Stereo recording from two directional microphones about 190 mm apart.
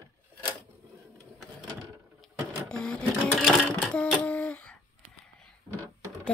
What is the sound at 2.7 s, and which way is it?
Sewing machine, 5° left (ahead or behind).